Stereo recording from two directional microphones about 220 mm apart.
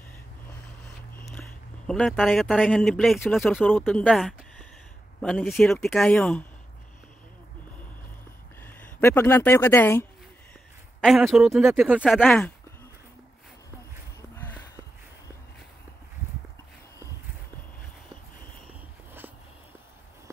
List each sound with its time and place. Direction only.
1.9 s speech: centre (ahead or behind)
8.6 s speech: 10° left (ahead or behind)
11.0 s speech: centre (ahead or behind)
12.0 s speech: 5° left (ahead or behind)